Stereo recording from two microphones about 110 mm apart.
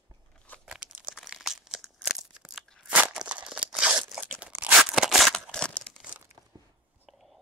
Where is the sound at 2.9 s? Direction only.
10° right (ahead or behind); by 5.9 s 10° left (ahead or behind).